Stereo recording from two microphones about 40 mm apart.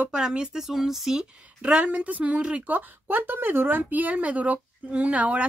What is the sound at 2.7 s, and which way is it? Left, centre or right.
Speech, right.